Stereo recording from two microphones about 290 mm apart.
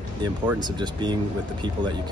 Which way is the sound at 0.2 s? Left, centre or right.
Centre.